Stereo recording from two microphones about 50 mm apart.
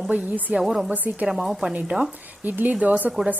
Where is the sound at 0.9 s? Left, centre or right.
Right.